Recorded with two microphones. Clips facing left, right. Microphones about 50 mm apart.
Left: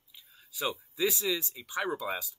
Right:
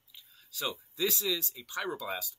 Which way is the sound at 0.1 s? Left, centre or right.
Centre.